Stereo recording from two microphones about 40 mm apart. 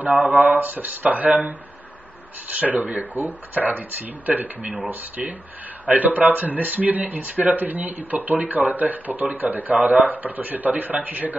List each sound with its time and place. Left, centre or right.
0.0 s speech: right
2.6 s speech: right